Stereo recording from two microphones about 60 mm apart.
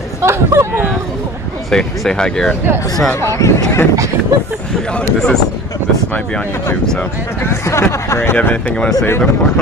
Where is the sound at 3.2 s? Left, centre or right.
Left.